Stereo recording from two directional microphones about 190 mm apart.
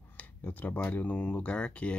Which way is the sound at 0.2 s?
10° left (ahead or behind).